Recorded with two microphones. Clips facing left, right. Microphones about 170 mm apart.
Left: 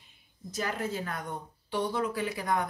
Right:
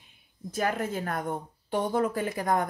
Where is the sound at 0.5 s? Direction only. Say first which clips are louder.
Right 4 dB; 55° right (ahead or behind).